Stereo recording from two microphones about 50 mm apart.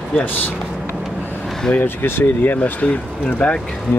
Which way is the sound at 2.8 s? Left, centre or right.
Left.